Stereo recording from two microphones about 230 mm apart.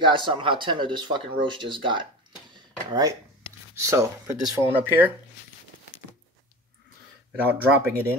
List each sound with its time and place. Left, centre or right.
0.0 s speech: right
7.4 s speech: centre